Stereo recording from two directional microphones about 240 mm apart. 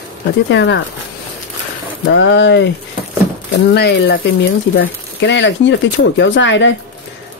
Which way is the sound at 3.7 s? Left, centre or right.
Left.